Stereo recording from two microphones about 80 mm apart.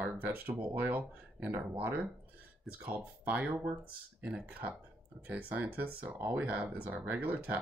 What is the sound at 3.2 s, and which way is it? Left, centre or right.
Speech, centre.